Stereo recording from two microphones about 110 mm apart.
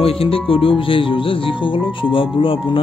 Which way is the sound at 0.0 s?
60° left (ahead or behind).